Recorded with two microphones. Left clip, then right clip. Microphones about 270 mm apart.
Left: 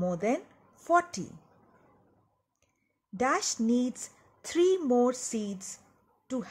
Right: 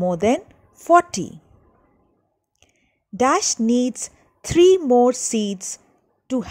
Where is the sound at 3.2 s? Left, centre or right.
Right.